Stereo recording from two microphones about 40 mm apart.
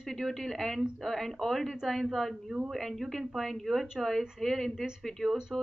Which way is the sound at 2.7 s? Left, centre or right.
Centre.